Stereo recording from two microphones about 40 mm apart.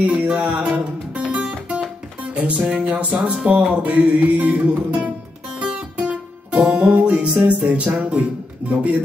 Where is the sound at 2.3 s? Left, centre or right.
Right.